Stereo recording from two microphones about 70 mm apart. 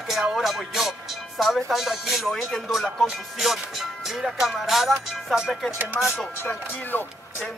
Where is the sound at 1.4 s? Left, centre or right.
Centre.